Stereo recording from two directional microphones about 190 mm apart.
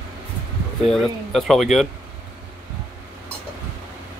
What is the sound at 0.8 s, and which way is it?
Speech, centre (ahead or behind).